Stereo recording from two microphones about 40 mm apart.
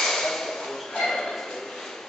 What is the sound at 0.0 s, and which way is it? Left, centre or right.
Ping, centre.